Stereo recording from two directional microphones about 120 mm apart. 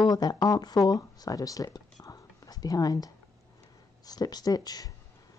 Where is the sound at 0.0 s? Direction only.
35° left (ahead or behind).